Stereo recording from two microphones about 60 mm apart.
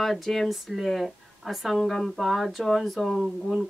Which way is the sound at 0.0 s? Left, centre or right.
Centre.